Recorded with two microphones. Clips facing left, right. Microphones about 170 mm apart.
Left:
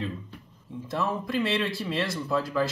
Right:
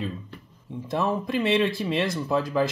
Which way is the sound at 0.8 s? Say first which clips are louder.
Right 4 dB; 15° right (ahead or behind).